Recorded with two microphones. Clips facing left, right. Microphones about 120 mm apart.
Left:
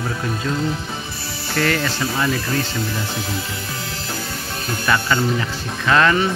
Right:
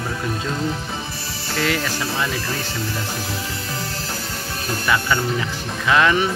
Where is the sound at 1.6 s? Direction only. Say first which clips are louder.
Left 2 dB; 10° right (ahead or behind).